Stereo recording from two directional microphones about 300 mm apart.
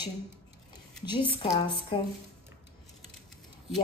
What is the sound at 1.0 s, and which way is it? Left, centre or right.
Speech, centre.